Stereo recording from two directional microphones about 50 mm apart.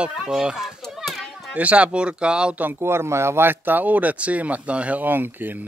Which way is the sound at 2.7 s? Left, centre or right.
Right.